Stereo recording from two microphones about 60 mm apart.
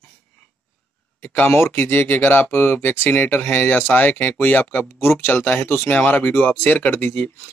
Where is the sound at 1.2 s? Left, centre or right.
Left.